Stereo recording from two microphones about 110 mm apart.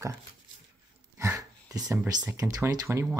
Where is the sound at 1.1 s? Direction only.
20° right (ahead or behind).